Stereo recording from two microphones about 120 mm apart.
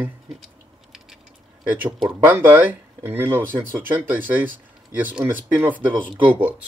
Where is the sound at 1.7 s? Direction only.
15° right (ahead or behind).